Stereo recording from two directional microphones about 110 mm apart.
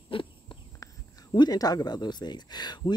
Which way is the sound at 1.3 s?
40° left (ahead or behind).